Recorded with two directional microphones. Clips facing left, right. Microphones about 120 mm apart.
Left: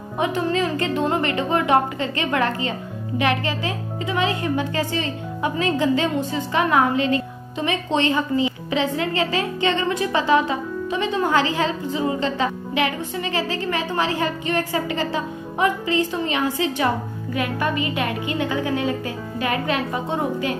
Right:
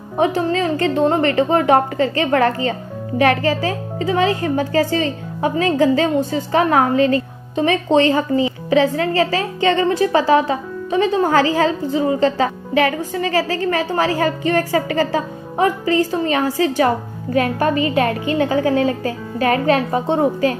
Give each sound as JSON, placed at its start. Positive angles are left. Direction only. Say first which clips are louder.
{"t": 0.2, "sound": "a woman's voice", "louder": "right 4 dB", "side_deg": -35}